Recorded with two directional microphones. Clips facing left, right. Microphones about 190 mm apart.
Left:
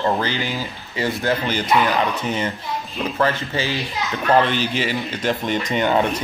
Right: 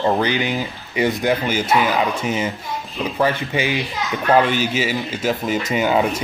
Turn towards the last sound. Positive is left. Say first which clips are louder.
# right 1 dB
turn(degrees=-5)  # may be behind; listen again after turning